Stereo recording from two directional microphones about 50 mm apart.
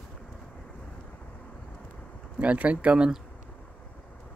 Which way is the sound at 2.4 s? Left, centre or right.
Right.